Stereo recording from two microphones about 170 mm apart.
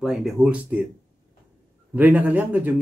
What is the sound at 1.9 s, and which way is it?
Speech, 10° right (ahead or behind).